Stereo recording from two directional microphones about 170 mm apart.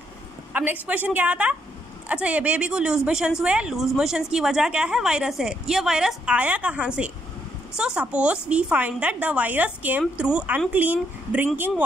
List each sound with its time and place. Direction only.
0.5 s a woman's voice: 10° right (ahead or behind)